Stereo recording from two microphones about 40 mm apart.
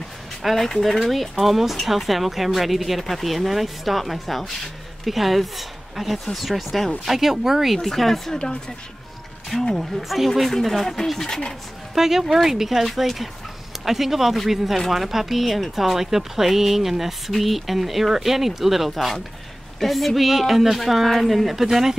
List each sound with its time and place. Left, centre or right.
0.4 s speech: centre
7.8 s speech: centre
8.4 s speech: left
9.8 s speech: centre
11.9 s speech: centre